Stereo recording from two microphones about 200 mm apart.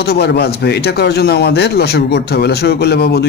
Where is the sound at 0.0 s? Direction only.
55° left (ahead or behind).